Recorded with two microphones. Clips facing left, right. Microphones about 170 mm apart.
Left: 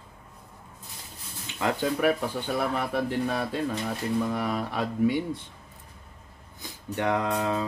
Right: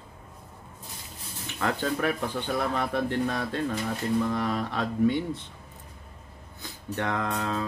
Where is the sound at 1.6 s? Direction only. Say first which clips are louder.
Left 2 dB; 15° left (ahead or behind).